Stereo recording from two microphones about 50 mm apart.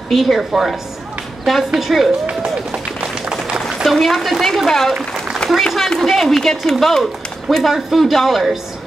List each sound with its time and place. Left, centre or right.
0.1 s a woman's voice: centre
2.2 s run: right
3.6 s speech: centre